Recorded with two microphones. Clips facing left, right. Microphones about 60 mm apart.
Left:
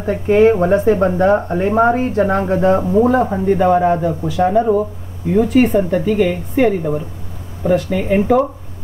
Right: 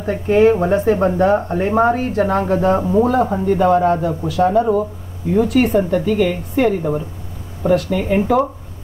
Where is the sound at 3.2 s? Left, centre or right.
Centre.